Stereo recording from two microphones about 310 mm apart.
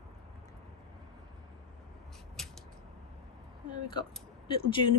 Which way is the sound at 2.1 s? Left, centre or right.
Centre.